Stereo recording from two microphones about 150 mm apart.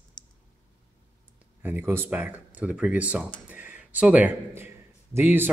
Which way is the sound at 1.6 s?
15° right (ahead or behind).